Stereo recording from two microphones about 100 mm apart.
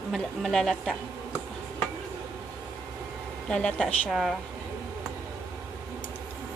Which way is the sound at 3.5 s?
10° left (ahead or behind).